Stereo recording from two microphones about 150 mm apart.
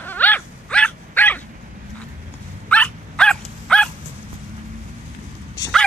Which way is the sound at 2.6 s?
10° left (ahead or behind).